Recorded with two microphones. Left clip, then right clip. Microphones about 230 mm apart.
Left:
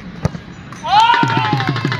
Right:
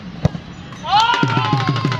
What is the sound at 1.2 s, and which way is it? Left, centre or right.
Music, left.